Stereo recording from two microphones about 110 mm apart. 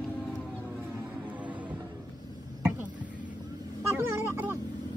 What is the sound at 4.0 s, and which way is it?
Cat, 20° right (ahead or behind).